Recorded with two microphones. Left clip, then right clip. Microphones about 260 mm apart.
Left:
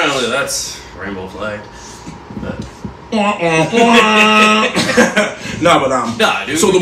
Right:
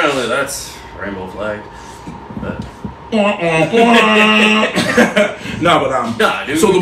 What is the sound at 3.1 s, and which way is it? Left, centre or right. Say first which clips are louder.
Speech: even; centre.